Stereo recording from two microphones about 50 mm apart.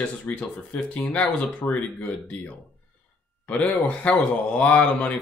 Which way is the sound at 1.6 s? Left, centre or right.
Left.